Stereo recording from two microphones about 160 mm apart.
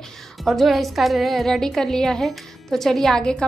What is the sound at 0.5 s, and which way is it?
A woman's voice, centre (ahead or behind).